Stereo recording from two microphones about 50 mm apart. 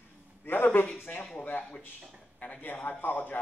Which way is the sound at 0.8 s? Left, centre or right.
Left.